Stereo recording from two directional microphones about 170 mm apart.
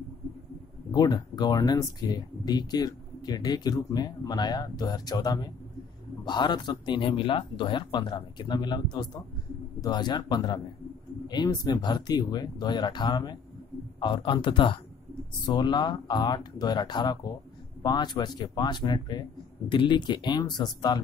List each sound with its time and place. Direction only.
0.9 s speech: 25° left (ahead or behind)